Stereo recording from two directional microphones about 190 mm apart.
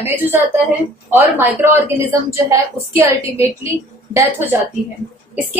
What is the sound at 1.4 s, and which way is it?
A woman's voice, 10° right (ahead or behind).